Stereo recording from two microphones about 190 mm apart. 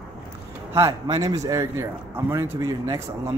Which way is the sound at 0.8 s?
15° right (ahead or behind).